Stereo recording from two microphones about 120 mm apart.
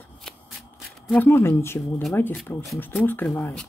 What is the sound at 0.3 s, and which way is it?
Shuffling cards, 5° left (ahead or behind).